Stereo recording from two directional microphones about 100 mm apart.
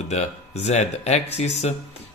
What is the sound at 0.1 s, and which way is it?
Speech, 90° left.